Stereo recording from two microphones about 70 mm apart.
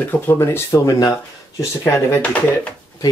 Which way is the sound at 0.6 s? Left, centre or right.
Left.